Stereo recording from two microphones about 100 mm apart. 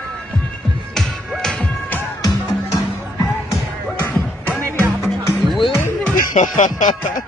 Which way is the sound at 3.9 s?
20° left (ahead or behind).